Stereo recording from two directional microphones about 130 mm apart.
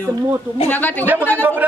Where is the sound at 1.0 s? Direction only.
15° right (ahead or behind).